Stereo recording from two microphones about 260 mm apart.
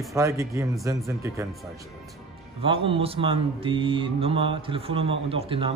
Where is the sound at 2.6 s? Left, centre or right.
Centre.